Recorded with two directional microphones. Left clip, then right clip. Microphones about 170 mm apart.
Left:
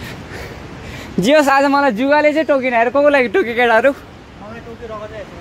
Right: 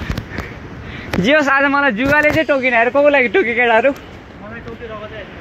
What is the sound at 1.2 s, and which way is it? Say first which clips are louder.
Speech: left 1 dB; 45° left (ahead or behind).